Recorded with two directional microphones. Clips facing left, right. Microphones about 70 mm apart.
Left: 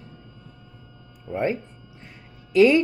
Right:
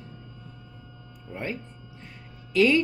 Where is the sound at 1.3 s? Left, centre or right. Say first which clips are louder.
Left 9 dB; left.